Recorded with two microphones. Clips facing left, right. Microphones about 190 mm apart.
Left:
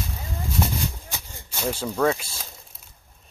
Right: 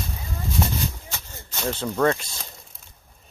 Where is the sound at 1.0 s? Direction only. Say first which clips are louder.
Even; 10° left (ahead or behind).